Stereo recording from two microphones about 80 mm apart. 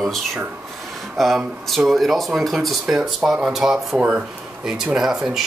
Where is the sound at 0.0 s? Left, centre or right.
Centre.